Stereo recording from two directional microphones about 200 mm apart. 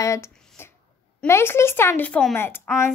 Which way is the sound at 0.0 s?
15° left (ahead or behind).